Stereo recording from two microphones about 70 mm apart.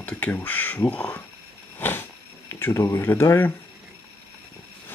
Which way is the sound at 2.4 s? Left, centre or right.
Left.